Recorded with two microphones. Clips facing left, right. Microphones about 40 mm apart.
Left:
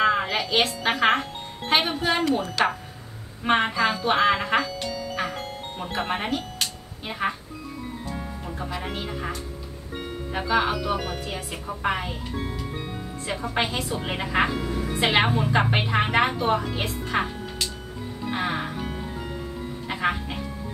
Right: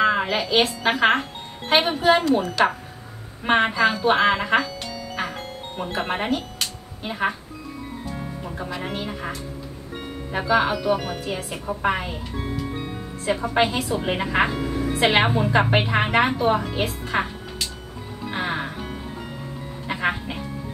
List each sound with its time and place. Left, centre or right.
0.0 s a woman's voice: centre
3.4 s a woman's voice: centre
3.7 s speech: centre
4.6 s music: centre
5.8 s a woman's voice: centre
8.5 s a woman's voice: centre
15.0 s a woman's voice: centre
18.2 s music: centre